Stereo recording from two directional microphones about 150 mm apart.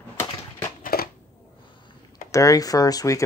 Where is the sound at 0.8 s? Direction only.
75° left (ahead or behind).